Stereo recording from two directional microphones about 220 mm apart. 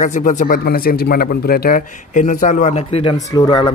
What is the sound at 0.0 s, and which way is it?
Speech, 35° left (ahead or behind).